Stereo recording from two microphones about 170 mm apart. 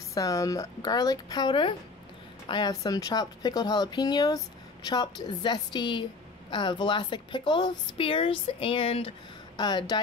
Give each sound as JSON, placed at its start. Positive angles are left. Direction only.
{"t": 0.1, "sound": "speech", "side_deg": 20}